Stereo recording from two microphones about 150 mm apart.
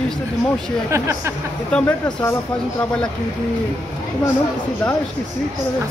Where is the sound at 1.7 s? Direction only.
15° left (ahead or behind).